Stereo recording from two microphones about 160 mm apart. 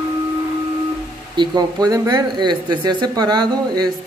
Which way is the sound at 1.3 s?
25° right (ahead or behind).